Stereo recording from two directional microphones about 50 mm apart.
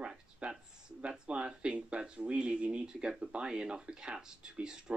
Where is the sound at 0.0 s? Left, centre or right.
Centre.